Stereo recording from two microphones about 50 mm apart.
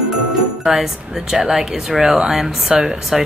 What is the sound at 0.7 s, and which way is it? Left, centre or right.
Speech, centre.